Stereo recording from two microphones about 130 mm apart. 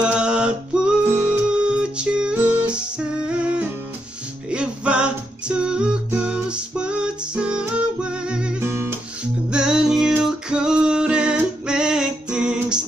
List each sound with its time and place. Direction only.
0.0 s a sound: 10° right (ahead or behind)
1.0 s music: 15° right (ahead or behind)
1.5 s music: 5° right (ahead or behind)
8.6 s guitar: 20° right (ahead or behind)
9.5 s music: 5° right (ahead or behind)